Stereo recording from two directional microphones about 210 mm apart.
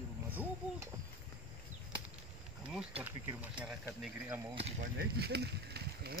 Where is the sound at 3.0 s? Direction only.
10° right (ahead or behind).